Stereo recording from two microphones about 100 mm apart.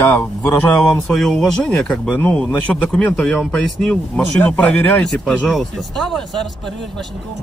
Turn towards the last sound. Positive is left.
turn(degrees=0)  # may be behind; listen again after turning